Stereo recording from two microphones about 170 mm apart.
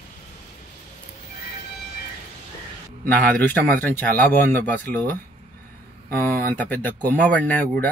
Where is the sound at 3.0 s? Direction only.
10° left (ahead or behind).